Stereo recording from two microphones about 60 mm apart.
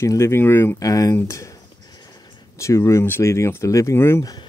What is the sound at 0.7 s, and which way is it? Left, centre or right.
Speech, left.